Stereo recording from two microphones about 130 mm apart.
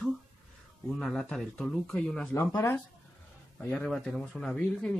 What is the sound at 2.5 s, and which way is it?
Speech, 15° left (ahead or behind).